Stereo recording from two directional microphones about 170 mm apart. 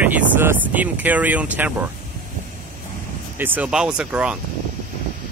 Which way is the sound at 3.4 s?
10° right (ahead or behind).